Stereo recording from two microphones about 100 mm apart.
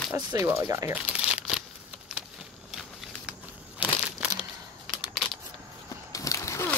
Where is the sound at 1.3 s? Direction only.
10° right (ahead or behind).